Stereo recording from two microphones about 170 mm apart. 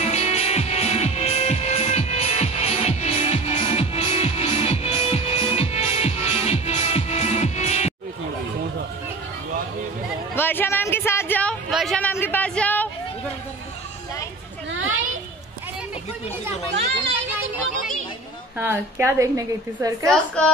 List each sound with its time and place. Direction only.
0.0 s music: 40° left (ahead or behind)
10.3 s a sound: 10° left (ahead or behind)
18.6 s a woman's voice: 10° right (ahead or behind)
20.1 s a woman's voice: 5° left (ahead or behind)